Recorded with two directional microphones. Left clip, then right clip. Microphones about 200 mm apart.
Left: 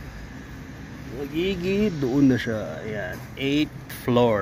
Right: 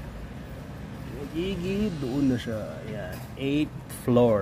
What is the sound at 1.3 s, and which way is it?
Speech, 30° left (ahead or behind).